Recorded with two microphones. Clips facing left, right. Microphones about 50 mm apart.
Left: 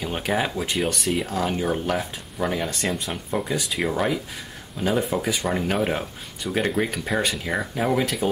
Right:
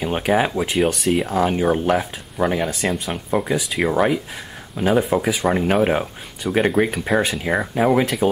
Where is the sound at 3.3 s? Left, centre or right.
Centre.